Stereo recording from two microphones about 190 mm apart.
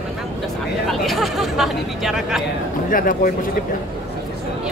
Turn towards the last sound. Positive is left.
turn(degrees=50)  # may be behind; listen again after turning